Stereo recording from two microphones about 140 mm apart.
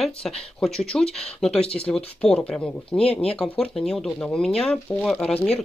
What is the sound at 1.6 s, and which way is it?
Speech, 45° left (ahead or behind).